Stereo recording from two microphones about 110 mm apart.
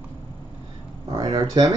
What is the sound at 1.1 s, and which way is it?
Speech, 35° right (ahead or behind).